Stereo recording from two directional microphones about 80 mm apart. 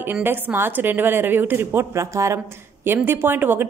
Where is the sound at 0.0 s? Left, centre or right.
Right.